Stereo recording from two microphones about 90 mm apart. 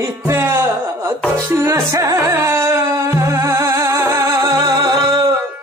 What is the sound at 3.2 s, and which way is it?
Music, 35° right (ahead or behind).